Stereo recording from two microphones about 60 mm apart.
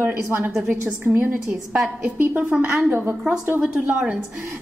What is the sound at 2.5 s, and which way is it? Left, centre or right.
Speech, centre.